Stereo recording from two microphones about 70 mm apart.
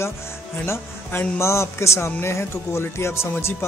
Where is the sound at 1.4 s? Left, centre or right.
Left.